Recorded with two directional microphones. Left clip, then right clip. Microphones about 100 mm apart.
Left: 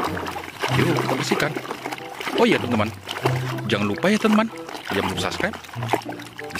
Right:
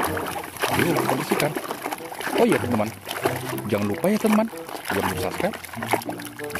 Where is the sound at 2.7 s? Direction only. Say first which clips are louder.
Left 1 dB; centre (ahead or behind).